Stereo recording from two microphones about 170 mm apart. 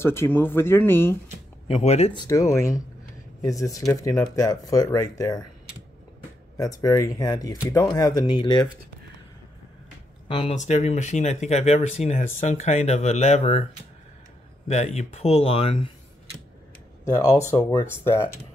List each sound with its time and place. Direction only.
0.0 s speech: 15° left (ahead or behind)
1.7 s speech: 35° left (ahead or behind)
2.2 s speech: 15° left (ahead or behind)
6.5 s speech: 20° left (ahead or behind)
10.2 s speech: 30° left (ahead or behind)
10.5 s speech: 45° left (ahead or behind)
14.7 s speech: 40° left (ahead or behind)
17.1 s speech: 20° left (ahead or behind)